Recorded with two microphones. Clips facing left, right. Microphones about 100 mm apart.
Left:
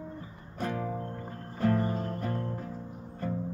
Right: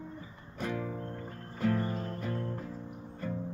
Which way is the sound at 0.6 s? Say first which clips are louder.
Left 2 dB; 45° left (ahead or behind).